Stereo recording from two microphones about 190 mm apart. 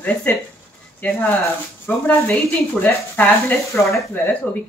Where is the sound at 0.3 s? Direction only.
10° left (ahead or behind).